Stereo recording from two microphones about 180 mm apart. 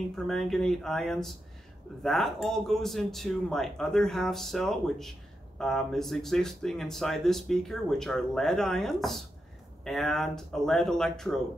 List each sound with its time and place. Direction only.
0.1 s speech: centre (ahead or behind)